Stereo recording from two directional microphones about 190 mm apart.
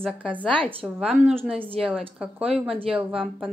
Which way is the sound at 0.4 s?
5° left (ahead or behind).